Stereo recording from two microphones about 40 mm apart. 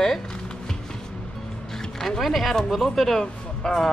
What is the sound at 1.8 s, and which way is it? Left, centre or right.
Speech, centre.